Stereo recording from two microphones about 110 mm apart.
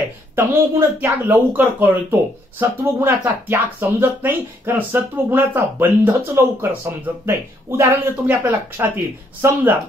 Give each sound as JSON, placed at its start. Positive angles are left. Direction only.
{"t": 0.4, "sound": "speech", "side_deg": -25}